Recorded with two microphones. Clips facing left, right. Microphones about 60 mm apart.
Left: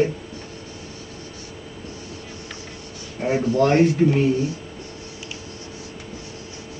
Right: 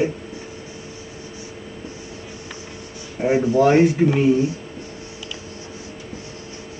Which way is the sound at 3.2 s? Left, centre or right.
Centre.